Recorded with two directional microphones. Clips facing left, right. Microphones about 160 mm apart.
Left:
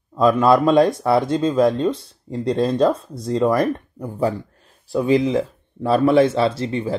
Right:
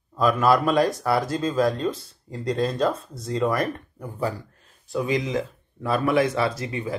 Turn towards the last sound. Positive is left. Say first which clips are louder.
# left 6 dB
turn(degrees=30)  # may be behind; listen again after turning